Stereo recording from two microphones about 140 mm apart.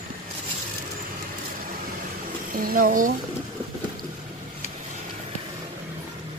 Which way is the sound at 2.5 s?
85° right.